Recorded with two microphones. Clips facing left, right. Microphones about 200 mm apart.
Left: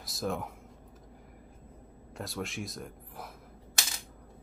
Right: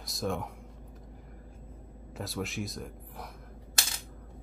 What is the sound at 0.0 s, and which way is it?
Speech, centre (ahead or behind).